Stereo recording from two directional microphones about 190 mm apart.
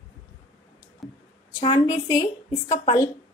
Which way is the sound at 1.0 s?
Centre (ahead or behind).